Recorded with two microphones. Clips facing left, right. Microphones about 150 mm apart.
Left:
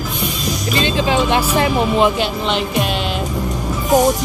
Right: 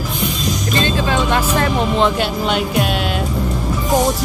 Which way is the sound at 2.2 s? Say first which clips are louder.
Right 1 dB; centre (ahead or behind).